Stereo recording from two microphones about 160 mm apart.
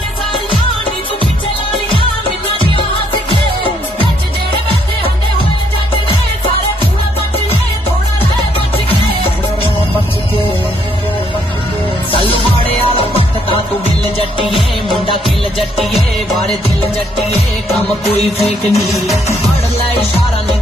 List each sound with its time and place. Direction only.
12.1 s music: 35° left (ahead or behind)
18.7 s music: centre (ahead or behind)